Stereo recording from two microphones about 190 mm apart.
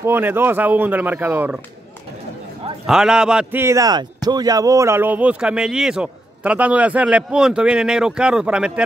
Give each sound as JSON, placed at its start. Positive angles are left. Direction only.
{"t": 0.0, "sound": "speech", "side_deg": -10}
{"t": 2.9, "sound": "speech", "side_deg": -5}